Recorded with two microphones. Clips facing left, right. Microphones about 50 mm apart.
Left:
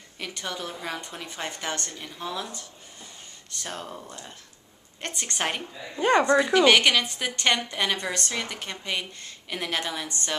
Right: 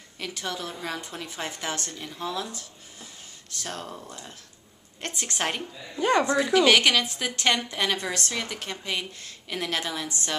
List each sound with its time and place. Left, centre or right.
0.2 s a woman's voice: centre
5.9 s speech: centre
6.3 s a woman's voice: centre